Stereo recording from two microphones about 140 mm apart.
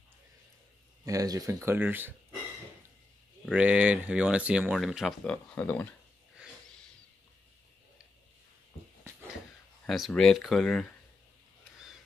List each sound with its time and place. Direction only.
1.0 s speech: 25° right (ahead or behind)
3.5 s speech: 10° right (ahead or behind); by 5.9 s 10° left (ahead or behind)
9.8 s speech: centre (ahead or behind)